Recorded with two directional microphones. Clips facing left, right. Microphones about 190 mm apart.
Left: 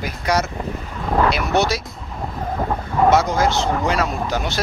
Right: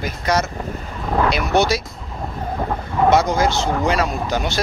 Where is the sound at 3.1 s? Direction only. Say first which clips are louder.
Right 1 dB; centre (ahead or behind).